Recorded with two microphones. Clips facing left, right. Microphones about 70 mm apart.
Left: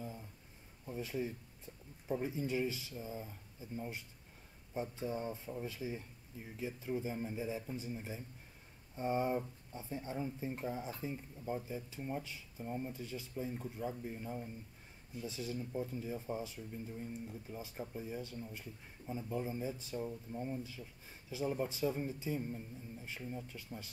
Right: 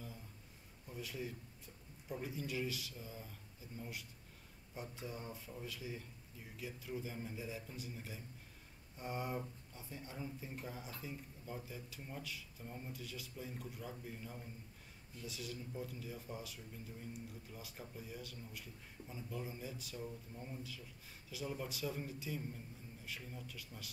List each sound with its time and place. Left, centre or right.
0.8 s speech: left